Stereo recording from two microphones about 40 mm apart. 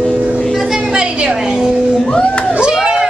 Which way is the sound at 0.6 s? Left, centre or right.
Centre.